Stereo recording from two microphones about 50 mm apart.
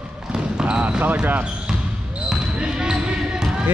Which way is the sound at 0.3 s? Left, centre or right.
Centre.